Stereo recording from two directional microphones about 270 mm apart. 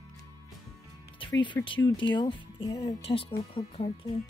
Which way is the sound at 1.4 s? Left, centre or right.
Centre.